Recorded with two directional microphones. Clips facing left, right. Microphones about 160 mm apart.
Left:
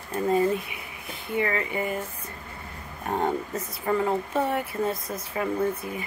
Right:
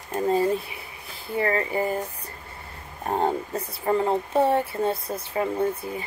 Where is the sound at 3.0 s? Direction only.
30° right (ahead or behind).